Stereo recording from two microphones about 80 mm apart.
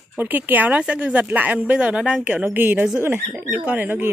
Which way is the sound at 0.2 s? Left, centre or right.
Right.